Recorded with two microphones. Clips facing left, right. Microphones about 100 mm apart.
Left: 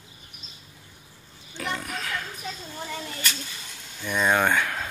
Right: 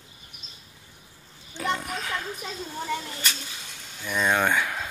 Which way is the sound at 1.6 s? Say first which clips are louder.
Right 3 dB; 20° right (ahead or behind).